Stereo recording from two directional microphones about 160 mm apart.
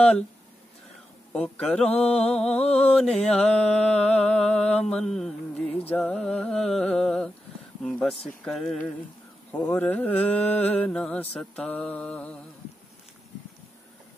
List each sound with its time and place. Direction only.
1.3 s mantra: 5° left (ahead or behind)